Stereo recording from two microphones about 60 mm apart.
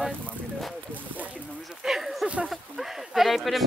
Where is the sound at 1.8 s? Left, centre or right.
Centre.